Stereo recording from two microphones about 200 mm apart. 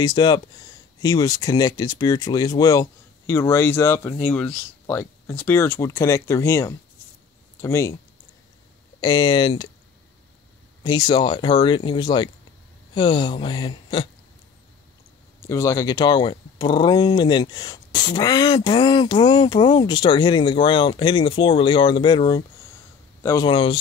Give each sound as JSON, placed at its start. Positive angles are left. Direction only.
{"t": 0.0, "sound": "speech", "side_deg": 20}
{"t": 9.0, "sound": "speech", "side_deg": 20}
{"t": 10.8, "sound": "speech", "side_deg": 20}
{"t": 15.4, "sound": "speech", "side_deg": 15}